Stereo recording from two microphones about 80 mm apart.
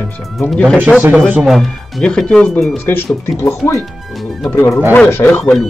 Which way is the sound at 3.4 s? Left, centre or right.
Left.